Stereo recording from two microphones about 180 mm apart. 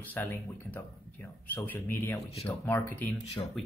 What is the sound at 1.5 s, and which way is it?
Speech, 10° left (ahead or behind).